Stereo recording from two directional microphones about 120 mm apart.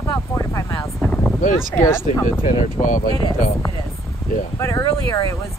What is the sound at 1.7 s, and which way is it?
Speech, 15° left (ahead or behind).